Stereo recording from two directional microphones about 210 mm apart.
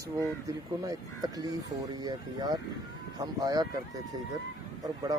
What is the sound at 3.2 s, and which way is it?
Speech, 15° right (ahead or behind).